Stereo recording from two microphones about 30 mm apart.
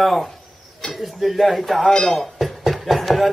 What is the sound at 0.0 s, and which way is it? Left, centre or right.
Speech, centre.